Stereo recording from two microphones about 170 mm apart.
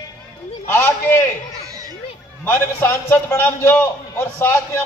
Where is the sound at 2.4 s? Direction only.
15° left (ahead or behind).